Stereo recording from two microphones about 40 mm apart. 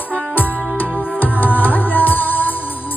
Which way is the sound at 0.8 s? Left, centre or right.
Left.